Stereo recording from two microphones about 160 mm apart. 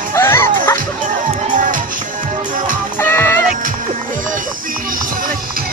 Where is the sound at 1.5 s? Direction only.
55° right (ahead or behind).